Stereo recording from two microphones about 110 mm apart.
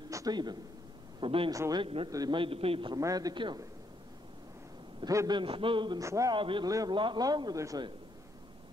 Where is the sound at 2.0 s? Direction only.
35° right (ahead or behind).